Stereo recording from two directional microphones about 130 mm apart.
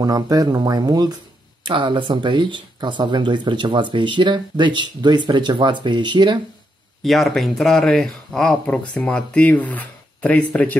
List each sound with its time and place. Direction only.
0.0 s speech: 30° right (ahead or behind)
7.0 s speech: centre (ahead or behind)